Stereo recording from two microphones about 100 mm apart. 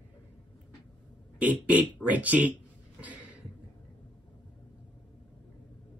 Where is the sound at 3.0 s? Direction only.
15° right (ahead or behind).